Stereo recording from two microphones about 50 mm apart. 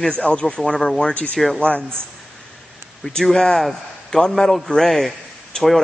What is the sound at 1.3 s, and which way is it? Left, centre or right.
Speech, centre.